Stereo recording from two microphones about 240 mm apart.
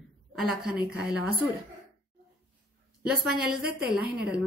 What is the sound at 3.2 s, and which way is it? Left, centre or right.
Speech, centre.